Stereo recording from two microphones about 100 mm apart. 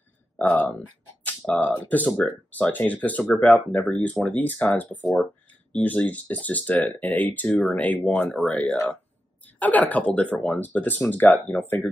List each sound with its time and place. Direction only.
0.4 s speech: 15° left (ahead or behind)